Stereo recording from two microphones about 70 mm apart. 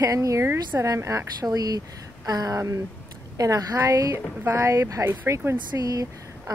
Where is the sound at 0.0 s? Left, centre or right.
Right.